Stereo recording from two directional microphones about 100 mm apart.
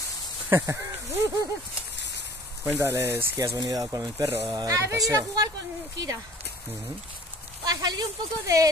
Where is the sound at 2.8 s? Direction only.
25° right (ahead or behind).